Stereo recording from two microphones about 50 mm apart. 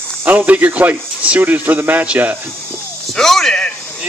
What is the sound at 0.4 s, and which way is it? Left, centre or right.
A man's voice, right.